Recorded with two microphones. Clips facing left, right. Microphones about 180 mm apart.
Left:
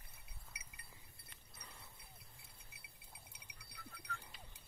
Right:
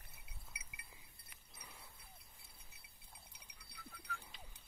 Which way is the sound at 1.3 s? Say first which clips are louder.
Even; 5° right (ahead or behind).